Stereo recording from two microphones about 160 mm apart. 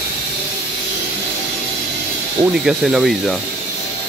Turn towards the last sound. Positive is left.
turn(degrees=0)  # may be behind; listen again after turning